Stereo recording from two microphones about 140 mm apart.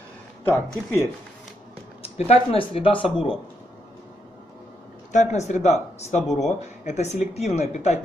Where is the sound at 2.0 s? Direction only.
45° left (ahead or behind).